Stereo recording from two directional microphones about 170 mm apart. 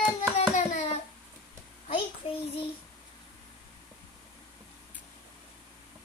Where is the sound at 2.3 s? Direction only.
35° left (ahead or behind).